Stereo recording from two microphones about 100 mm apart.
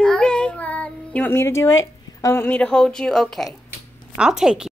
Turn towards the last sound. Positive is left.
turn(degrees=-5)  # may be behind; listen again after turning